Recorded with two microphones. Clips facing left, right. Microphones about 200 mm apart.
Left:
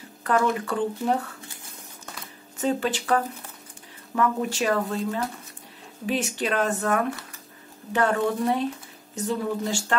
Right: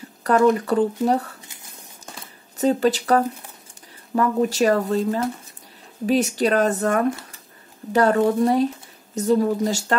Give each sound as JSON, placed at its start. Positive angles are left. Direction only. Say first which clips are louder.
{"t": 0.2, "sound": "speech", "louder": "right 6 dB", "side_deg": -40}
{"t": 2.5, "sound": "speech", "louder": "right 6 dB", "side_deg": -40}